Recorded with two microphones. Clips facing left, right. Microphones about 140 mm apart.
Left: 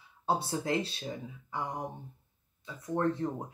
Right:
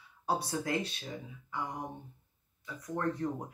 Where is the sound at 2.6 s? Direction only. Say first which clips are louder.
Left 4 dB; 25° left (ahead or behind).